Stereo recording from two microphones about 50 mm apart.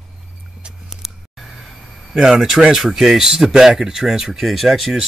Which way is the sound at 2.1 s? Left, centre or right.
Centre.